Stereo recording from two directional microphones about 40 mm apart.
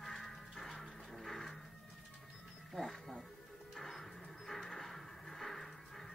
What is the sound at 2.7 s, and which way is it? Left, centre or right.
Music, centre.